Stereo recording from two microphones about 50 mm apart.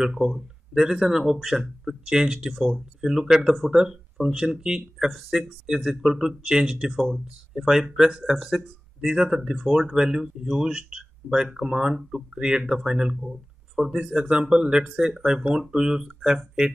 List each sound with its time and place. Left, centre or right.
0.0 s speech: centre
2.5 s speech: centre
6.9 s speech: centre
7.5 s speech: centre